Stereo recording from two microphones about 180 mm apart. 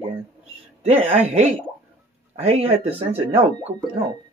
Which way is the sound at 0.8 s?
40° right (ahead or behind).